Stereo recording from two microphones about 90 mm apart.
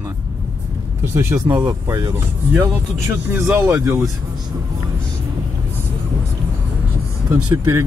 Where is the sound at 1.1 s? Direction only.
30° right (ahead or behind).